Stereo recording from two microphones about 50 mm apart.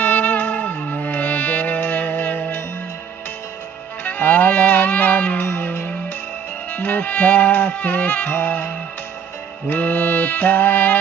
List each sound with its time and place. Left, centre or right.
0.0 s music: left
4.0 s music: left